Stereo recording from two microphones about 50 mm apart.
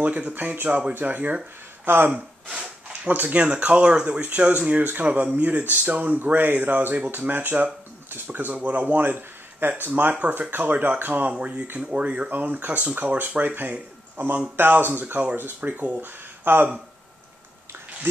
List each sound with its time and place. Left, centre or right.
0.0 s speech: right
4.2 s speech: right
13.4 s speech: right
16.1 s a sound: right